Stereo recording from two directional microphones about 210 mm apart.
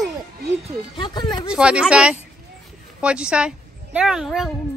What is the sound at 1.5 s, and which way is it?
A child's voice, 5° right (ahead or behind).